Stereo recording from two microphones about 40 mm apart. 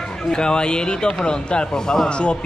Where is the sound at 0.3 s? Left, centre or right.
Centre.